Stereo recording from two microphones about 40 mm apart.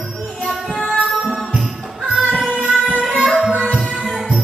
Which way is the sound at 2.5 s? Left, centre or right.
Right.